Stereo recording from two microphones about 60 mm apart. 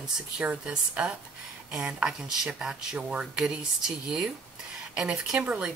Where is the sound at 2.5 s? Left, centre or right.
Centre.